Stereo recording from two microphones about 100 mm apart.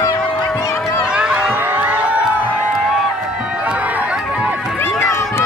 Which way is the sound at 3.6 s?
15° right (ahead or behind).